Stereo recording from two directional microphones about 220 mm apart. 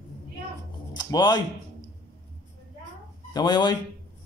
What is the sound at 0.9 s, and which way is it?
Music, 20° left (ahead or behind).